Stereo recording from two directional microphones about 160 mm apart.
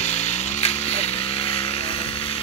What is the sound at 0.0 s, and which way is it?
Vehicle, 40° left (ahead or behind).